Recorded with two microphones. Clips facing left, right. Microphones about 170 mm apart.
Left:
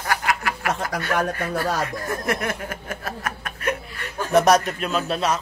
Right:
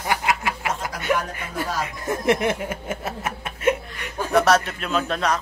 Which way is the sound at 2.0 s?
25° right (ahead or behind).